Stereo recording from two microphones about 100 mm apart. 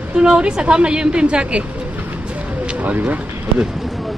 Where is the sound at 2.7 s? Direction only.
15° right (ahead or behind).